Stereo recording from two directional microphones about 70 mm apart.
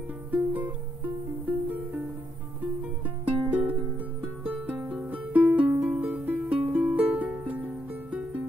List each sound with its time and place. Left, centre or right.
0.3 s music: right
3.4 s music: right